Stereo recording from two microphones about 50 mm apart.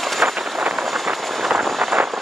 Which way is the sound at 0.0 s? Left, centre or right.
Centre.